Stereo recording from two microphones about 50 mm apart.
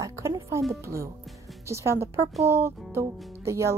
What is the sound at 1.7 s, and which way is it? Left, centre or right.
Speech, right.